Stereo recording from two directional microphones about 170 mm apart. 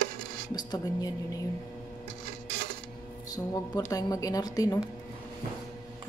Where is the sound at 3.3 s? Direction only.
20° left (ahead or behind).